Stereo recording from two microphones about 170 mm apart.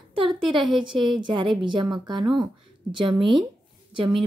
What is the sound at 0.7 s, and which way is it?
Speech, 30° right (ahead or behind).